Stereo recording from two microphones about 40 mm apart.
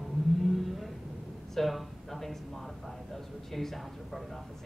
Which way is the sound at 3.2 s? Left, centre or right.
Centre.